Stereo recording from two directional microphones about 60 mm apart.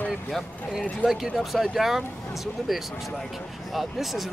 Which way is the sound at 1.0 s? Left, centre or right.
Centre.